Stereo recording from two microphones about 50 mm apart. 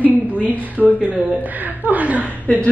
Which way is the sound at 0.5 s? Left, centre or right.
Right.